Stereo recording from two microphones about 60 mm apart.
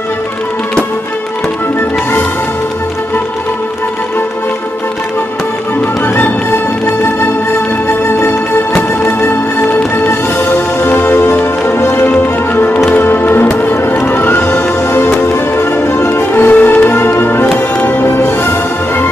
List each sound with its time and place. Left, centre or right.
6.1 s music: left
12.1 s music: left
16.1 s music: left